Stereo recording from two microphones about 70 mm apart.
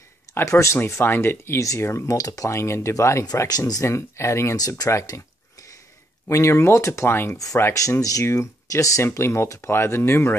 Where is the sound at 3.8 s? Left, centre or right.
Left.